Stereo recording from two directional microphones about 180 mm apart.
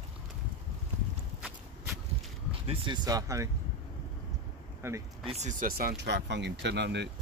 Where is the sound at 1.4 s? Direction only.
5° right (ahead or behind).